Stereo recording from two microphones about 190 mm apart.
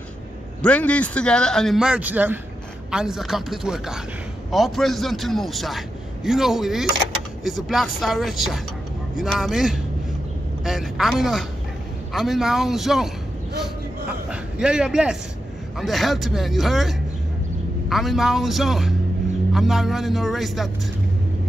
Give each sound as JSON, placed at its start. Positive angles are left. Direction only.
{"t": 0.6, "sound": "a man's voice", "side_deg": 5}
{"t": 14.3, "sound": "a man's voice", "side_deg": -5}